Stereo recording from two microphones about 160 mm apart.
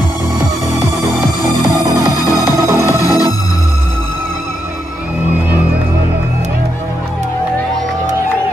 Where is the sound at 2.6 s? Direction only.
20° right (ahead or behind).